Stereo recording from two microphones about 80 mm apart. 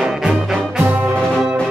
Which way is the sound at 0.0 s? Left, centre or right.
Centre.